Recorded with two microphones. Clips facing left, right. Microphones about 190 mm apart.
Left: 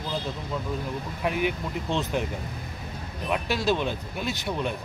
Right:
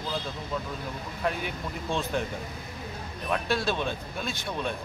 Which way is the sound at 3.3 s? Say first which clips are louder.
Left 2 dB; 15° left (ahead or behind).